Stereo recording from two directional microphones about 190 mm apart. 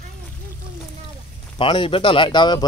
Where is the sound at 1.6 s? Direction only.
25° left (ahead or behind).